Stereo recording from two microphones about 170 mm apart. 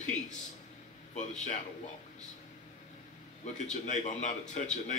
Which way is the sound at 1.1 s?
45° left (ahead or behind).